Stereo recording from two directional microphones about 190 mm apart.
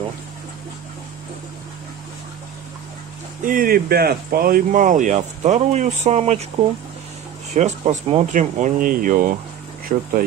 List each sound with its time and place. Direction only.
3.4 s speech: 50° right (ahead or behind); by 6.4 s 35° right (ahead or behind)
7.5 s speech: 35° right (ahead or behind)